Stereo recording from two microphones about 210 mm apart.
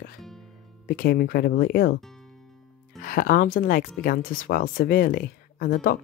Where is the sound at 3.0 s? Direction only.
45° left (ahead or behind).